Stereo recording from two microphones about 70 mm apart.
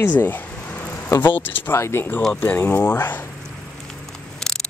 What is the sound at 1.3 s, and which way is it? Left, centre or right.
Speech, left.